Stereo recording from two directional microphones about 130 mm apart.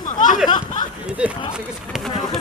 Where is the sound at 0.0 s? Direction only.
85° left.